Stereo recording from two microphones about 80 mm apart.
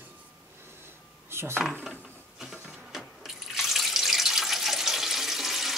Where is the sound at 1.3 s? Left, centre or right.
Right.